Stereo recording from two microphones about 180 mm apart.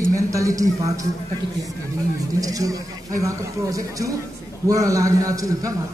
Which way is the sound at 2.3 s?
20° right (ahead or behind).